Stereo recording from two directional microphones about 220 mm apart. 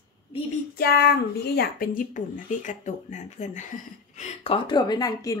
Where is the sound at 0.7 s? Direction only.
45° left (ahead or behind).